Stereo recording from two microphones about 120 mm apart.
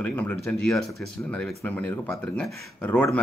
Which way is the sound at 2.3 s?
10° left (ahead or behind).